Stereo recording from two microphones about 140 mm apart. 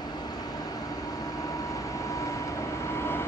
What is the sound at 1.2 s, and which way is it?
Vehicle, 25° left (ahead or behind).